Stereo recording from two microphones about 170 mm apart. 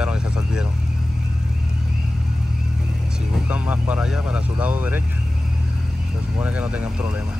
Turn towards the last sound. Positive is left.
turn(degrees=-5)  # may be behind; listen again after turning